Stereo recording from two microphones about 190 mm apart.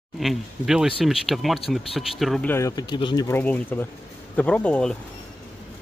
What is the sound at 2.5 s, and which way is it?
Speech, 20° left (ahead or behind).